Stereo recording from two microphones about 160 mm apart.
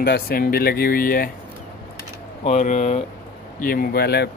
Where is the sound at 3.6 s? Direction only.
65° left (ahead or behind); by 4.2 s 85° left.